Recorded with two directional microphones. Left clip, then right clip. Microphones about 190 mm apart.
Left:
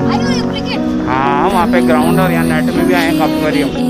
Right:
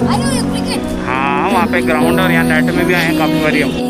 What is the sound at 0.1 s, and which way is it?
Music, 5° left (ahead or behind).